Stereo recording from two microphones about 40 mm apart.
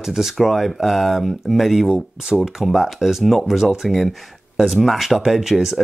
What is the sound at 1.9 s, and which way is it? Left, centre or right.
Speech, centre.